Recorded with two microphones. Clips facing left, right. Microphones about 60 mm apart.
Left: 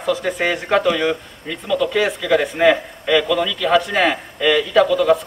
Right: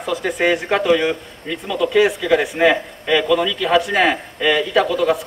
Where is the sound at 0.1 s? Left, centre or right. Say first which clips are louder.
Right 1 dB; centre.